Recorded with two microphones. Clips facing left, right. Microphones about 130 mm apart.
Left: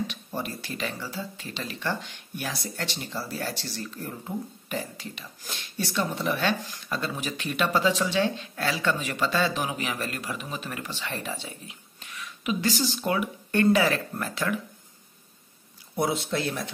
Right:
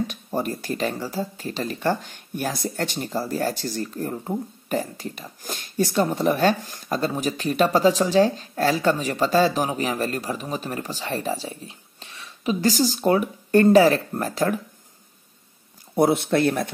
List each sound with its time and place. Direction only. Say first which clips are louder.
0.0 s speech: right 6 dB; 45° right (ahead or behind)
16.0 s speech: right 8 dB; 60° right (ahead or behind)